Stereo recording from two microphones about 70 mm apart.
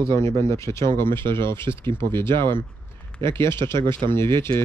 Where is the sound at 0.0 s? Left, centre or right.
Left.